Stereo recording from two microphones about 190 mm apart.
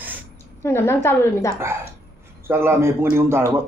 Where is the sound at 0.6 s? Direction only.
15° left (ahead or behind).